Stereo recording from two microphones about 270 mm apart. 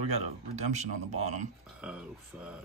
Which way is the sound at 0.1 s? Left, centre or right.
Right.